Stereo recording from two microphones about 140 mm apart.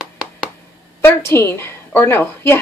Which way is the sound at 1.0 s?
20° left (ahead or behind).